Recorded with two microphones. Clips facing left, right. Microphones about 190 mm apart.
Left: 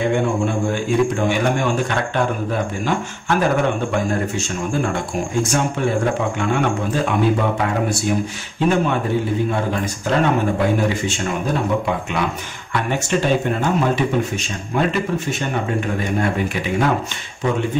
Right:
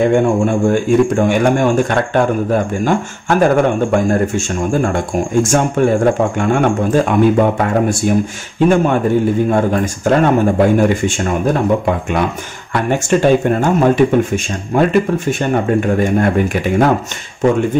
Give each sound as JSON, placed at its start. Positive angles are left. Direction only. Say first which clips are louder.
{"t": 0.1, "sound": "a man's voice", "louder": "right 6 dB", "side_deg": -50}
{"t": 10.0, "sound": "a man's voice", "louder": "right 6 dB", "side_deg": -50}